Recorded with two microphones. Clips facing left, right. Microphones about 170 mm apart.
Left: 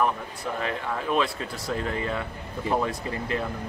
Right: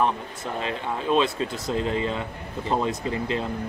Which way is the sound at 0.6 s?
20° right (ahead or behind).